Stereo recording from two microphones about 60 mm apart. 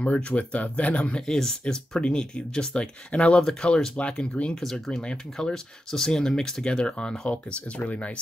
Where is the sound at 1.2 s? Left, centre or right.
Centre.